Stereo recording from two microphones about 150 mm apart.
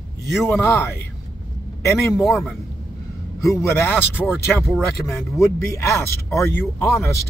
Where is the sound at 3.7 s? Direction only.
15° left (ahead or behind).